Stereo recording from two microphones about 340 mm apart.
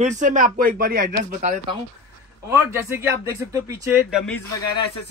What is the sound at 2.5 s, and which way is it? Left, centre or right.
Speech, centre.